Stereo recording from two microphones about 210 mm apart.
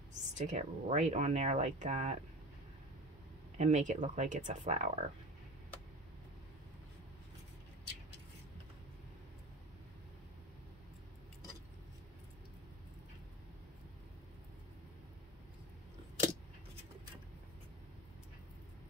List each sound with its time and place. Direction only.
0.1 s speech: 35° right (ahead or behind)
3.5 s speech: 35° right (ahead or behind)